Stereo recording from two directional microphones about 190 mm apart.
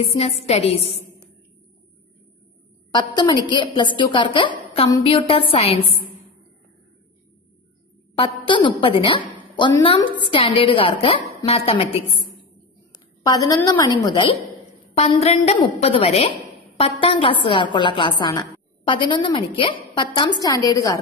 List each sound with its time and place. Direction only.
0.0 s a woman's voice: 35° left (ahead or behind)
3.4 s a woman's voice: 25° left (ahead or behind)
8.2 s a woman's voice: 25° left (ahead or behind)
13.2 s a woman's voice: 20° left (ahead or behind)
15.0 s a woman's voice: 35° left (ahead or behind); by 21.0 s 20° left (ahead or behind)